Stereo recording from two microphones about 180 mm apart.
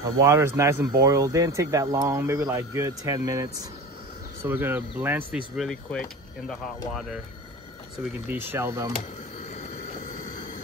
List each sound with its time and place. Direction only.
0.0 s speech: 15° right (ahead or behind)
5.6 s speech: 5° left (ahead or behind)
8.0 s speech: 10° right (ahead or behind)